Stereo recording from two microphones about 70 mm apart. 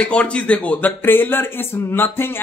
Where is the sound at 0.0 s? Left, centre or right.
Centre.